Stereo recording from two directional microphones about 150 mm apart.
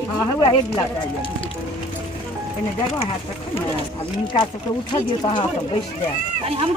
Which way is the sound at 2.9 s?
40° left (ahead or behind).